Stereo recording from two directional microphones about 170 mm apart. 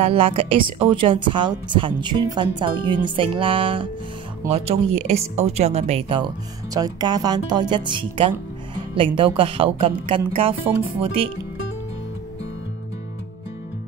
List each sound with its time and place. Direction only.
0.0 s a woman's voice: 35° right (ahead or behind)